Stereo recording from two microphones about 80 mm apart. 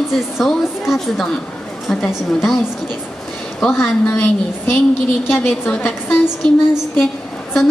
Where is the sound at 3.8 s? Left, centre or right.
Left.